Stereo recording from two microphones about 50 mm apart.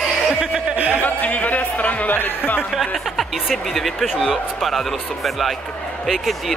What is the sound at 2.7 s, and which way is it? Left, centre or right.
Speech, centre.